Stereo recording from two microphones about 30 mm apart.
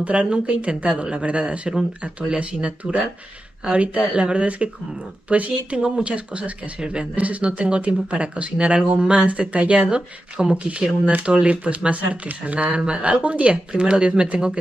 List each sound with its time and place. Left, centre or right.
0.0 s speech: right
2.8 s speech: right
6.0 s speech: right
7.2 s speech: right
11.5 s speech: right
11.8 s speech: right
12.3 s speech: right
13.7 s speech: right